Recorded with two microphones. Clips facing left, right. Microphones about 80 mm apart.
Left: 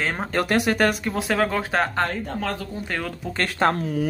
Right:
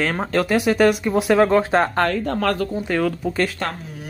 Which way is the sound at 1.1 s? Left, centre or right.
Centre.